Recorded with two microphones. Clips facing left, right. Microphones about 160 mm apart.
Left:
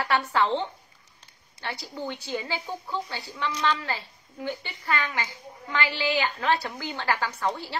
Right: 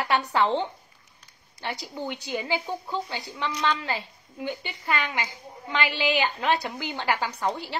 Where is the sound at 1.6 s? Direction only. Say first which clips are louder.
Right 1 dB; 15° right (ahead or behind).